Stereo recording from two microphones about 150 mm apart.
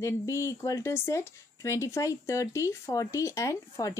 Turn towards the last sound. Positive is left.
turn(degrees=20)  # may be behind; listen again after turning